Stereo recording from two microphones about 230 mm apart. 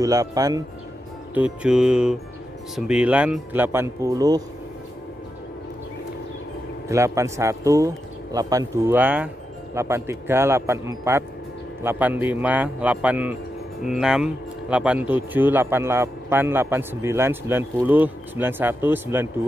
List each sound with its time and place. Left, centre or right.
0.0 s a man's voice: centre
1.3 s music: centre
2.7 s a man's voice: centre
6.9 s a man's voice: centre